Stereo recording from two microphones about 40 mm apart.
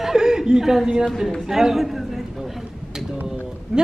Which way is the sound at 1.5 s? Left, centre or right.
Centre.